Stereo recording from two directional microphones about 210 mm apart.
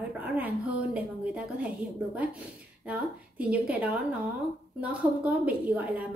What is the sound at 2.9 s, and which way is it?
A woman's voice, 5° right (ahead or behind).